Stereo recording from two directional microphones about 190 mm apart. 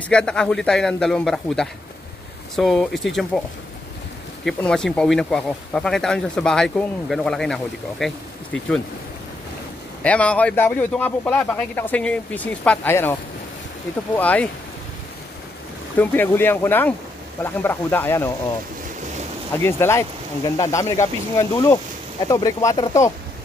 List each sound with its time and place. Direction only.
0.1 s speech: 5° left (ahead or behind)
4.5 s speech: centre (ahead or behind)
10.0 s a man's voice: 5° left (ahead or behind)
14.1 s a man's voice: 5° left (ahead or behind)
16.0 s a man's voice: 10° left (ahead or behind)
19.5 s a man's voice: 15° left (ahead or behind)